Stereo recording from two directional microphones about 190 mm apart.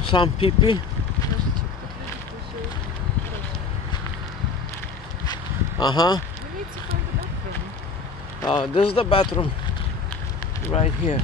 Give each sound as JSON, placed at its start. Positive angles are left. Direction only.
{"t": 0.1, "sound": "speech", "side_deg": 25}
{"t": 5.2, "sound": "a sound", "side_deg": 20}
{"t": 8.4, "sound": "speech", "side_deg": 25}
{"t": 10.7, "sound": "speech", "side_deg": 35}